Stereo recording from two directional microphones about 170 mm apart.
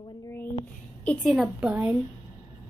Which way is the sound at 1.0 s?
Centre (ahead or behind).